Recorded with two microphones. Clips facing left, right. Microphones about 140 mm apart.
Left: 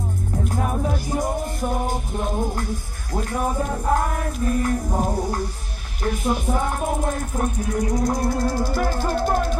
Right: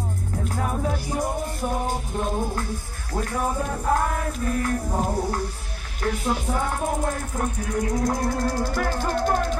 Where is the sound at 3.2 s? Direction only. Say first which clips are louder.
Left 2 dB; 15° left (ahead or behind).